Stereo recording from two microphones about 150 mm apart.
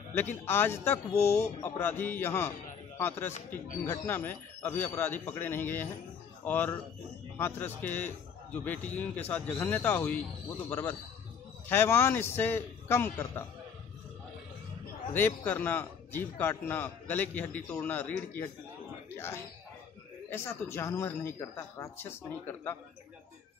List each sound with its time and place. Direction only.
0.1 s a man's voice: 15° left (ahead or behind)
15.1 s a man's voice: 15° left (ahead or behind)
19.1 s a sound: 15° left (ahead or behind)
20.2 s a man's voice: 15° left (ahead or behind)